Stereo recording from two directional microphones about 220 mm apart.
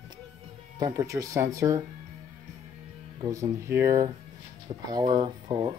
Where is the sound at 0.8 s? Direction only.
15° right (ahead or behind).